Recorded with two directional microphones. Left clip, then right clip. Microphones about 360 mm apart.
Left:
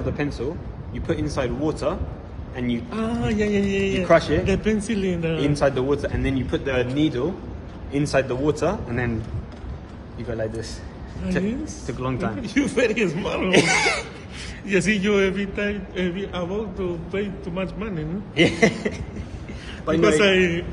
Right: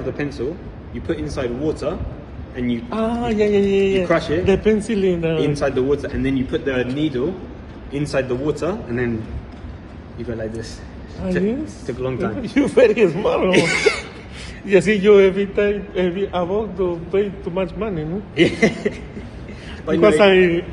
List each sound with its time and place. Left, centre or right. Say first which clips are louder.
0.0 s a man's voice: right 2 dB; centre
2.9 s a man's voice: right 8 dB; centre
4.0 s a man's voice: left 1 dB; centre
4.5 s a man's voice: right 6 dB; centre
5.5 s a man's voice: right 2 dB; left
10.3 s a man's voice: even; centre
11.2 s speech: right 4 dB; centre
12.0 s a man's voice: right 4 dB; centre
12.4 s speech: right 8 dB; centre
13.5 s a man's voice: left 2 dB; centre
14.7 s a man's voice: right 8 dB; centre
18.3 s a man's voice: right 2 dB; centre
20.0 s speech: right 5 dB; centre